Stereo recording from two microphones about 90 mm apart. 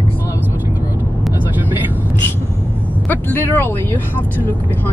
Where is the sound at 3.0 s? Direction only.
20° left (ahead or behind).